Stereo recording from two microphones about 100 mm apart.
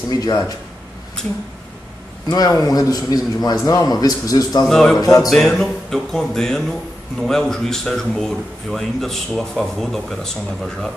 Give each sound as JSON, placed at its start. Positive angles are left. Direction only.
{"t": 0.1, "sound": "speech", "side_deg": 40}
{"t": 2.2, "sound": "speech", "side_deg": 40}
{"t": 4.6, "sound": "speech", "side_deg": 5}
{"t": 5.0, "sound": "speech", "side_deg": 35}
{"t": 5.3, "sound": "speech", "side_deg": 5}